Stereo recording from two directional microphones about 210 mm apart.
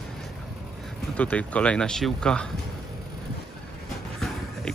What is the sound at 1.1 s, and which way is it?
Speech, 5° left (ahead or behind).